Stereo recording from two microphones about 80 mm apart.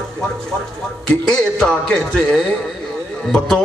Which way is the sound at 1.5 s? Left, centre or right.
Centre.